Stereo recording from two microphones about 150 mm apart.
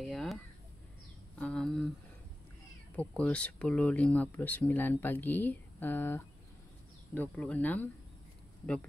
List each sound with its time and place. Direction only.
0.0 s speech: centre (ahead or behind)
1.4 s speech: 5° left (ahead or behind)
3.0 s speech: 10° left (ahead or behind)